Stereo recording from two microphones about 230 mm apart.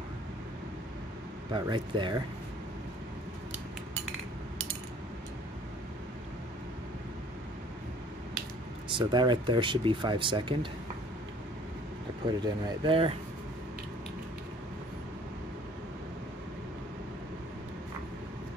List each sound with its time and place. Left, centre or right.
1.5 s speech: centre
8.9 s speech: centre
12.4 s speech: centre